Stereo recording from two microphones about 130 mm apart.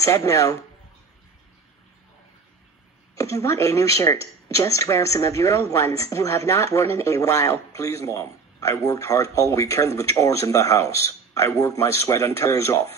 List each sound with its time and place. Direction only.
0.0 s speech: 25° left (ahead or behind)
3.2 s speech: 25° left (ahead or behind)